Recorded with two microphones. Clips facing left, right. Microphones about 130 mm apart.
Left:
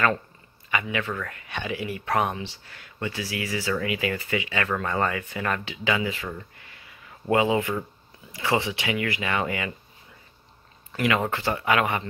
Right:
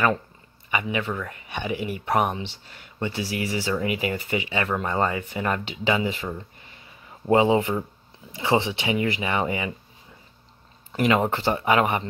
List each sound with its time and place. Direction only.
0.7 s a man's voice: 20° right (ahead or behind)
10.9 s speech: 25° right (ahead or behind)